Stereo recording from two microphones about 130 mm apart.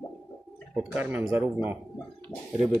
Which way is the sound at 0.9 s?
15° right (ahead or behind).